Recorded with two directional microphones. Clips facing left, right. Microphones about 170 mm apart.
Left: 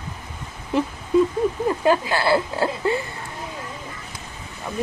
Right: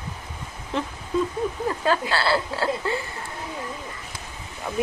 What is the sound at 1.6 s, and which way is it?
Speech, 15° left (ahead or behind).